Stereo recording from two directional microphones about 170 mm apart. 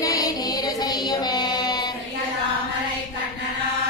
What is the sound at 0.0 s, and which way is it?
Music, 20° left (ahead or behind).